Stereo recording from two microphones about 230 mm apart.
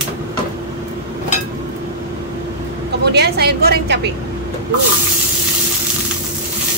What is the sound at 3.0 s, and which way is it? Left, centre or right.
A woman's voice, right.